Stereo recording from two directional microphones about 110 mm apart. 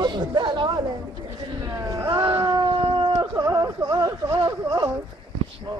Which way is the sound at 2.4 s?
40° right (ahead or behind).